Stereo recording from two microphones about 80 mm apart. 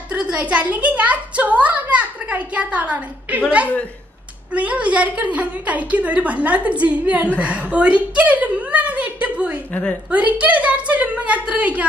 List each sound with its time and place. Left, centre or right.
0.1 s a woman's voice: centre
7.3 s a sound: centre
9.7 s a woman's voice: centre
10.0 s a woman's voice: centre